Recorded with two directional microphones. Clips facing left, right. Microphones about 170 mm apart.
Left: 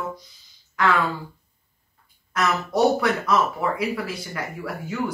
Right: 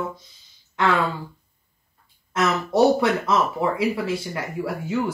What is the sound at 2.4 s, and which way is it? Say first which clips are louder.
Speech: right 2 dB; 25° right (ahead or behind).